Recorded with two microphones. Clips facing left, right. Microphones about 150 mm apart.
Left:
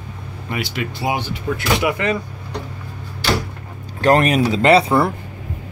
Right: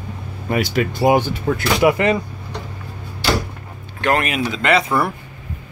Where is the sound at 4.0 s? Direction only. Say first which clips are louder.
Left 5 dB; 40° left (ahead or behind).